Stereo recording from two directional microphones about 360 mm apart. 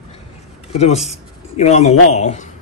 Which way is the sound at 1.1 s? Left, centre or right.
Centre.